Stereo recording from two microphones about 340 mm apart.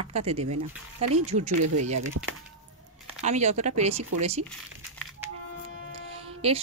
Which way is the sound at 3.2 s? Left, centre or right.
Centre.